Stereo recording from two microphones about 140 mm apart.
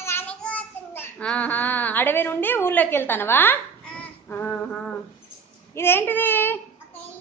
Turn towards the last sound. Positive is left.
turn(degrees=15)  # may be behind; listen again after turning